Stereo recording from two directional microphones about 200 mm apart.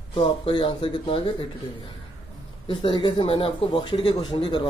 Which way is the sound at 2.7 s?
25° left (ahead or behind).